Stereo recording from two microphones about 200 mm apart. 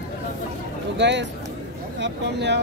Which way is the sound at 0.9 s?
60° right (ahead or behind).